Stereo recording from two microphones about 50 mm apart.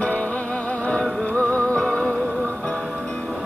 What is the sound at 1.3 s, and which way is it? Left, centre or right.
Music, left.